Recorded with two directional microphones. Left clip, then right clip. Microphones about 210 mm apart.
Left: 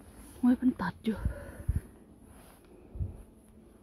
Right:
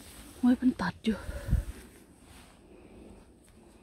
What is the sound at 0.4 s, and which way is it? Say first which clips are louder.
Speech: right 1 dB; 5° right (ahead or behind).